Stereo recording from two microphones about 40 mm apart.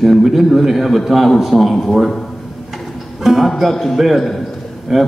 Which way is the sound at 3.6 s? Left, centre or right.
Centre.